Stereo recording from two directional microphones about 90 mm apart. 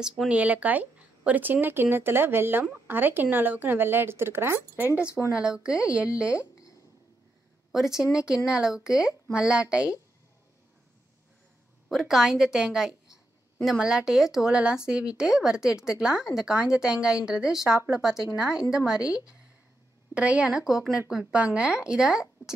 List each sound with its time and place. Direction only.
0.3 s speech: 15° right (ahead or behind)
7.7 s speech: 5° right (ahead or behind)
11.9 s speech: 5° right (ahead or behind)
20.2 s speech: 15° right (ahead or behind)